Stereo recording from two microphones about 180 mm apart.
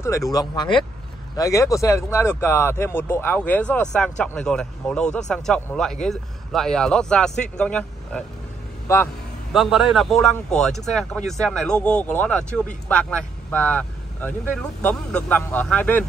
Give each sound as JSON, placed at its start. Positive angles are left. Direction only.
{"t": 0.0, "sound": "a man's voice", "side_deg": 15}
{"t": 9.5, "sound": "a man's voice", "side_deg": 0}